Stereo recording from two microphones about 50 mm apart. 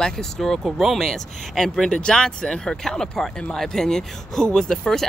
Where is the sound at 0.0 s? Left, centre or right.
Centre.